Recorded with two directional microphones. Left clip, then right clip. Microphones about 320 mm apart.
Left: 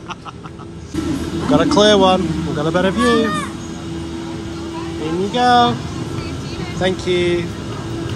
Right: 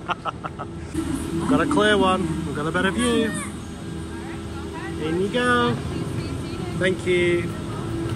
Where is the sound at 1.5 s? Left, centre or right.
Left.